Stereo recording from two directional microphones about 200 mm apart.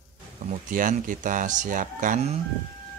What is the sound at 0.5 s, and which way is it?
Speech, 40° right (ahead or behind).